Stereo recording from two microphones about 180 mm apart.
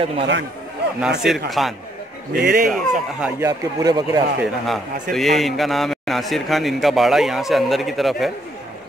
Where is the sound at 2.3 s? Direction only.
55° right (ahead or behind).